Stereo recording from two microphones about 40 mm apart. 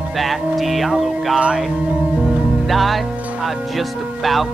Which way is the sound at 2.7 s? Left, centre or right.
Centre.